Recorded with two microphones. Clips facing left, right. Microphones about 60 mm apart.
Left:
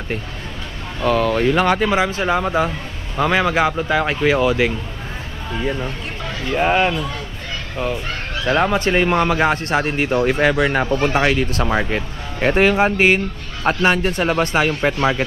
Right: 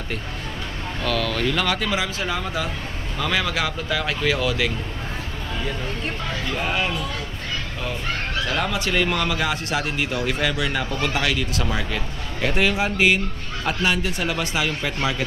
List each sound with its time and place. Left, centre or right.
1.0 s speech: left
6.5 s speech: left
8.5 s speech: left